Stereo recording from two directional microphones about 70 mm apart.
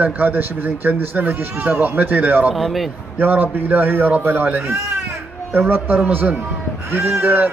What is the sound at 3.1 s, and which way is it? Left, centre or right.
Speech, right.